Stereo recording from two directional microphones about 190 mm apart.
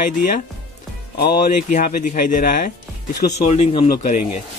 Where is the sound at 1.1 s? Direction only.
55° left (ahead or behind).